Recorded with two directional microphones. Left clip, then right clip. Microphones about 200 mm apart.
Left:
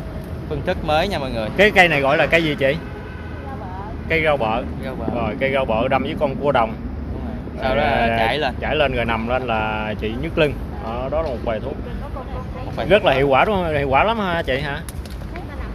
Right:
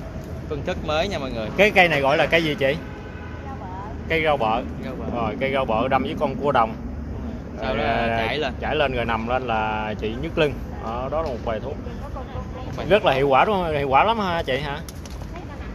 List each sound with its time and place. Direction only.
0.7 s speech: 30° left (ahead or behind)
1.6 s speech: centre (ahead or behind)
4.1 s speech: centre (ahead or behind)
7.6 s speech: 35° left (ahead or behind)
8.6 s speech: centre (ahead or behind)
12.8 s speech: centre (ahead or behind)